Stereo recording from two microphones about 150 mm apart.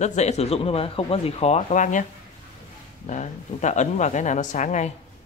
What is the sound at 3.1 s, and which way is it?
Speech, 55° left (ahead or behind).